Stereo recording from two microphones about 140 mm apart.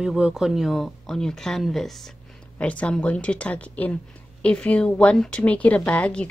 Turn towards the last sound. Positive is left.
turn(degrees=10)  # may be behind; listen again after turning